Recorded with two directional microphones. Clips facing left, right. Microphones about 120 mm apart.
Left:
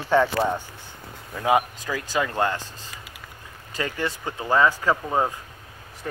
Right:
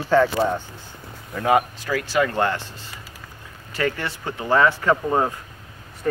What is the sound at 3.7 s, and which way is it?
Speech, 20° left (ahead or behind).